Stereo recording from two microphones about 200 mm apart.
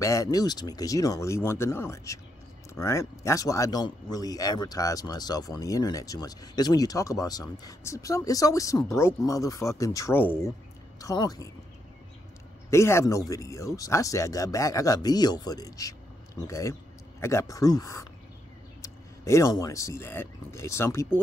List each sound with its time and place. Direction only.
0.0 s speech: 15° left (ahead or behind)
12.6 s speech: 15° left (ahead or behind)
18.8 s a sound: 15° left (ahead or behind)
19.6 s speech: 15° left (ahead or behind)